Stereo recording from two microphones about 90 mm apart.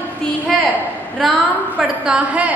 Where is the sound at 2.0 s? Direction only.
10° right (ahead or behind).